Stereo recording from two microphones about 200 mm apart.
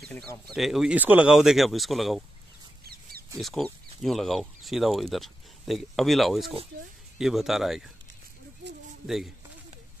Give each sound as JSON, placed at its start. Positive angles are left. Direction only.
{"t": 0.1, "sound": "speech", "side_deg": 5}
{"t": 2.9, "sound": "chicken", "side_deg": -50}
{"t": 3.3, "sound": "speech", "side_deg": 0}
{"t": 9.0, "sound": "speech", "side_deg": 0}